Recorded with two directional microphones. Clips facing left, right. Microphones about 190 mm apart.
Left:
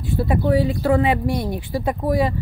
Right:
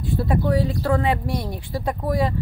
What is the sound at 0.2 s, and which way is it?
Speech, 5° left (ahead or behind).